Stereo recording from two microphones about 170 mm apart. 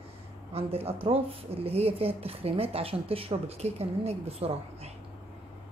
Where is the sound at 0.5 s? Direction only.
35° right (ahead or behind).